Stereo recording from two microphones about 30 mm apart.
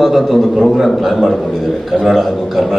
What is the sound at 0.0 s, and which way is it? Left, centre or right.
A man's voice, centre.